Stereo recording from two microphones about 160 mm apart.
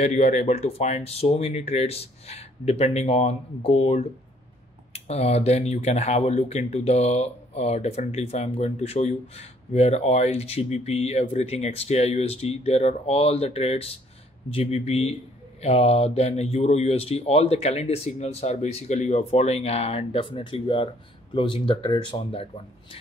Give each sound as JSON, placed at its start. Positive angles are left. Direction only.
{"t": 0.0, "sound": "speech", "side_deg": 45}